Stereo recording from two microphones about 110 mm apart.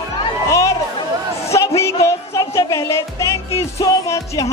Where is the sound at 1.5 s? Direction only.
25° left (ahead or behind).